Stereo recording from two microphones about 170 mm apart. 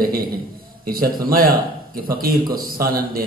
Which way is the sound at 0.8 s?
60° right (ahead or behind).